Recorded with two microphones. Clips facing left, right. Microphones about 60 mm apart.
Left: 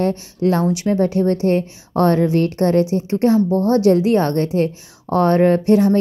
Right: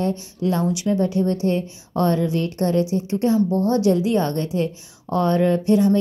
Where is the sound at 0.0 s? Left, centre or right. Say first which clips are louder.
Left 5 dB; left.